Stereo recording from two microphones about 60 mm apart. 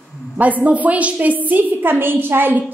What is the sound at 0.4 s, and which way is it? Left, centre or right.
A woman's voice, right.